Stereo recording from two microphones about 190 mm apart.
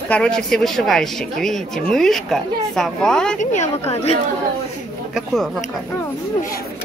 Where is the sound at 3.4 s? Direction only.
40° left (ahead or behind).